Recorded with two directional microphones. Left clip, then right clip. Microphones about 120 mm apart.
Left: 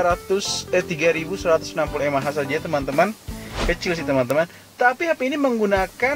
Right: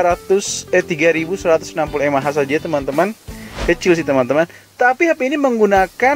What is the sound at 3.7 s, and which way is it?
Speech, 55° right (ahead or behind).